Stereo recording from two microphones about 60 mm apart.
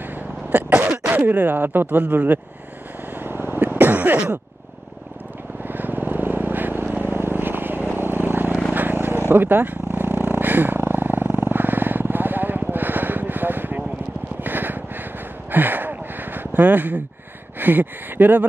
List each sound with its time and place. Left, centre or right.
0.5 s cough: right
1.1 s speech: right
3.2 s a sound: right
5.7 s vehicle: right
9.3 s a sound: right
15.5 s gasp: right
17.6 s speech: right